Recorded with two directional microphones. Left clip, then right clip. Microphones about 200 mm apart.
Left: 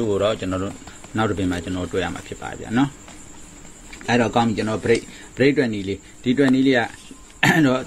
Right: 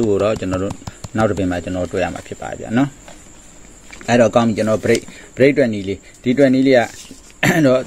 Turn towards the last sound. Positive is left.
turn(degrees=-40)  # may be behind; listen again after turning